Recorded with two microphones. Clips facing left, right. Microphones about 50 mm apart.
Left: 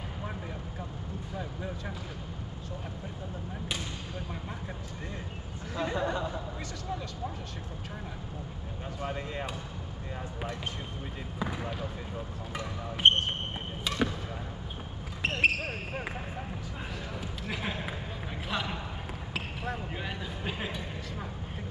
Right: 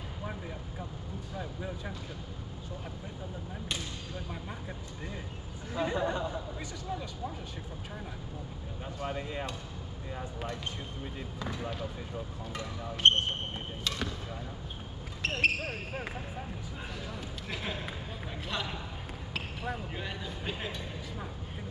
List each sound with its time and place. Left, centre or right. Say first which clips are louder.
5.8 s speech: even; centre
13.0 s basketball bounce: left 1 dB; centre
15.2 s basketball bounce: left 2 dB; centre
17.5 s basketball bounce: left 2 dB; centre